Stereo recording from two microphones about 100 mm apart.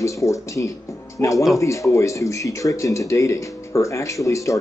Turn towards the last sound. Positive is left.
turn(degrees=35)  # may be behind; listen again after turning